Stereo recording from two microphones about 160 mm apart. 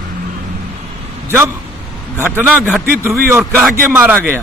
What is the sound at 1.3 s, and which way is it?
A man's voice, 15° right (ahead or behind).